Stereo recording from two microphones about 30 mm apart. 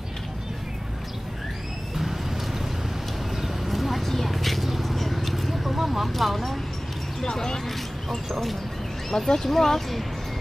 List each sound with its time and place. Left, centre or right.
3.3 s a sound: centre
4.6 s vehicle: centre
6.0 s a sound: centre
7.2 s basketball bounce: centre
8.3 s speech: centre
9.1 s speech: centre